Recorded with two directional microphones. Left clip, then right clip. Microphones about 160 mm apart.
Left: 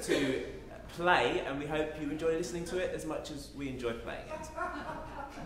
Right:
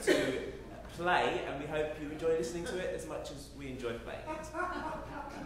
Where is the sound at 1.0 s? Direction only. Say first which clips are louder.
Left 2 dB; 25° left (ahead or behind).